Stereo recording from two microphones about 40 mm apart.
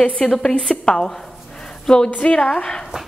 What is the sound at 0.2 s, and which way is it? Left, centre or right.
Speech, centre.